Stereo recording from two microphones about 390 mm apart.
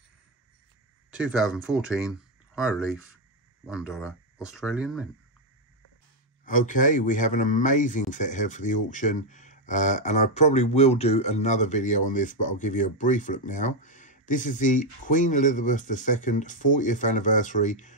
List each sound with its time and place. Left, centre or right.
1.1 s speech: centre
6.4 s speech: centre